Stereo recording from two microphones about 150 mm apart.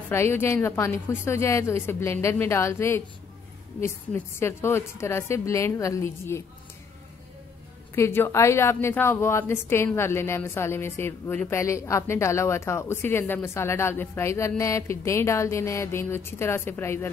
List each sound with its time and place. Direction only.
0.1 s a woman's voice: 15° left (ahead or behind)
7.9 s a woman's voice: 15° left (ahead or behind)